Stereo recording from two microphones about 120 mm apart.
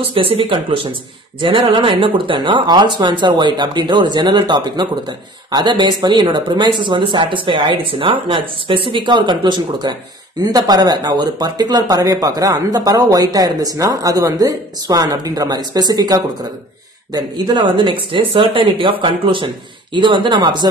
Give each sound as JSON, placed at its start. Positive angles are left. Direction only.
{"t": 0.1, "sound": "speech", "side_deg": -50}